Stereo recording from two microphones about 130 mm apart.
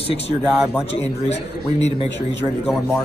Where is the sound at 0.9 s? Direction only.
55° left (ahead or behind).